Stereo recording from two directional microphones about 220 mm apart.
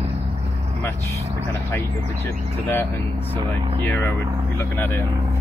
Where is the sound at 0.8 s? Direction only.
15° left (ahead or behind).